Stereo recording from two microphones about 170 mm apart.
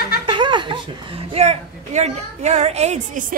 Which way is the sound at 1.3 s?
40° right (ahead or behind).